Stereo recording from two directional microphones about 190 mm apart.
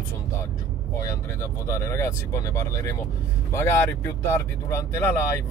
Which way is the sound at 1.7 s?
15° left (ahead or behind).